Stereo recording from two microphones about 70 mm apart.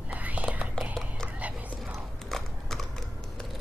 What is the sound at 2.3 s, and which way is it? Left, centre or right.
Horse, centre.